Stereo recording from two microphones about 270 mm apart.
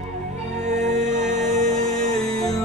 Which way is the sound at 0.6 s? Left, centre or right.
Right.